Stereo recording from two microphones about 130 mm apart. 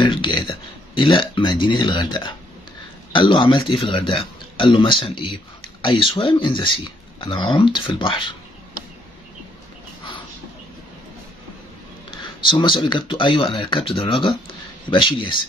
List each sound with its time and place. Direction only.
0.0 s speech: 40° left (ahead or behind)
12.1 s a sound: 40° left (ahead or behind)
12.8 s speech: 35° left (ahead or behind)